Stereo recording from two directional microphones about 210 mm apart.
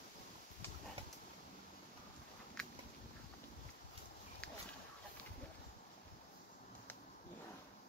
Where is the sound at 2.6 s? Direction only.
5° left (ahead or behind).